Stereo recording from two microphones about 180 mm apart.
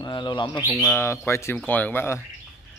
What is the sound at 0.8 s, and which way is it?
Speech, 15° left (ahead or behind).